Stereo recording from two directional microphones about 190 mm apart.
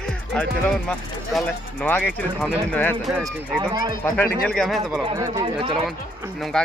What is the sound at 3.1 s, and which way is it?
Speech, centre (ahead or behind).